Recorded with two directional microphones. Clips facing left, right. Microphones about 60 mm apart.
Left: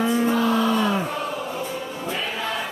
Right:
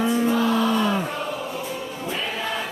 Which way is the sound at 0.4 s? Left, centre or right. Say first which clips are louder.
Even; centre.